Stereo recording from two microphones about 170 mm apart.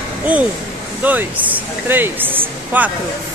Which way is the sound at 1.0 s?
10° right (ahead or behind).